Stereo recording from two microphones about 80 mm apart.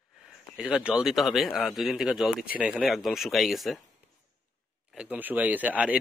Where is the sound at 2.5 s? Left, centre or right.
Centre.